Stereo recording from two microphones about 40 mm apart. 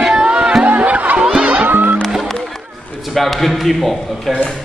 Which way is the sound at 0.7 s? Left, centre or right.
Right.